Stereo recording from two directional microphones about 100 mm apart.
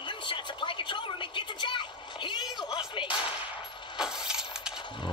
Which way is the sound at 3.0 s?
55° left (ahead or behind).